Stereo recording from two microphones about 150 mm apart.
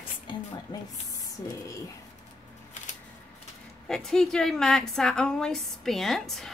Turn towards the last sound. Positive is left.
turn(degrees=0)  # may be behind; listen again after turning